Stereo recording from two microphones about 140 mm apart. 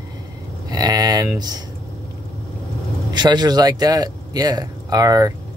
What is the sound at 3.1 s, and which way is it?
Speech, 30° right (ahead or behind).